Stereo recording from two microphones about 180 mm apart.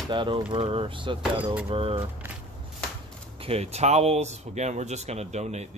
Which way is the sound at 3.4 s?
35° right (ahead or behind).